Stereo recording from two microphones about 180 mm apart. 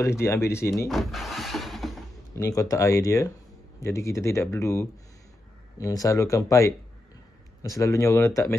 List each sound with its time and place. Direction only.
0.0 s speech: 15° left (ahead or behind)
0.8 s speech: centre (ahead or behind)
2.3 s speech: 15° left (ahead or behind)